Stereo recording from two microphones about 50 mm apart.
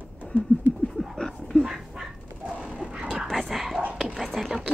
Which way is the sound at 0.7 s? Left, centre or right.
Centre.